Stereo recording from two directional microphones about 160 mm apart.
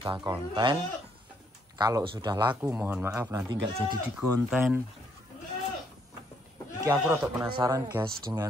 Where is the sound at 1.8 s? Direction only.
25° right (ahead or behind).